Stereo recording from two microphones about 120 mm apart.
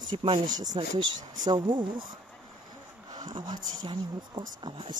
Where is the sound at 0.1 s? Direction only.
45° right (ahead or behind).